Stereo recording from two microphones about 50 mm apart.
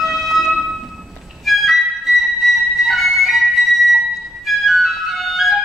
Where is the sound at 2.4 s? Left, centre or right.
Centre.